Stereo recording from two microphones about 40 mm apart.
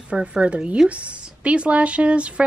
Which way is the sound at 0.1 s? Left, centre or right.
Right.